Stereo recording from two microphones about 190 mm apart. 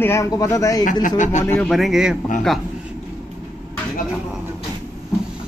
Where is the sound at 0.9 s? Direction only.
45° left (ahead or behind).